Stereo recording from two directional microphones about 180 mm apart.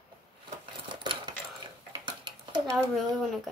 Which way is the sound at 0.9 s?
25° right (ahead or behind).